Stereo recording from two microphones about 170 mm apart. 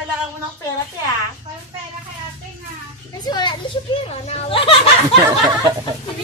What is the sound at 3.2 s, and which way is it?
A child's voice, 25° left (ahead or behind).